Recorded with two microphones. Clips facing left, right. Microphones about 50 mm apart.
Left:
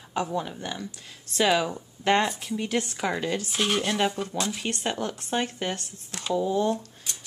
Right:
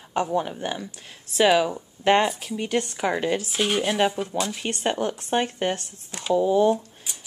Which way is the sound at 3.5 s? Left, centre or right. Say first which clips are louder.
Right 2 dB; centre.